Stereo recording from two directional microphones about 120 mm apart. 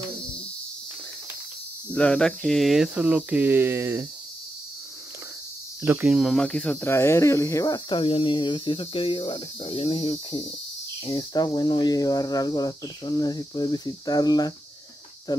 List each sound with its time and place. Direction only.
1.9 s speech: 10° left (ahead or behind); by 4.1 s 20° right (ahead or behind)
5.9 s speech: 10° right (ahead or behind)
6.3 s speech: 10° left (ahead or behind)
6.9 s speech: 20° left (ahead or behind)
7.9 s speech: 45° left (ahead or behind)
11.1 s speech: 35° left (ahead or behind)